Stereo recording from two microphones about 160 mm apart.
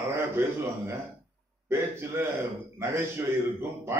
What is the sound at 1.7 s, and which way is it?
A man's voice, 15° right (ahead or behind).